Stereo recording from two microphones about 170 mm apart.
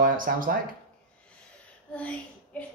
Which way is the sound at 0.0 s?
55° right (ahead or behind).